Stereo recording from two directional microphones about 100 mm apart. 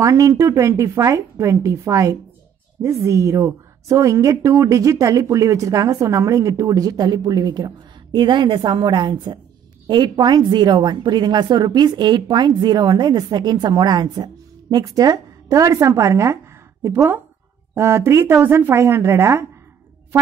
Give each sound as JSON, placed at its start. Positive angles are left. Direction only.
{"t": 0.0, "sound": "a woman's voice", "side_deg": -35}